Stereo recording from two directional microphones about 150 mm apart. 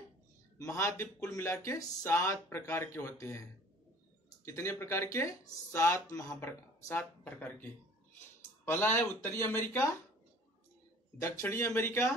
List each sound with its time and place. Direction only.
0.6 s speech: 20° left (ahead or behind)
4.5 s speech: 20° left (ahead or behind)
8.6 s speech: 15° left (ahead or behind)
11.1 s speech: 20° left (ahead or behind)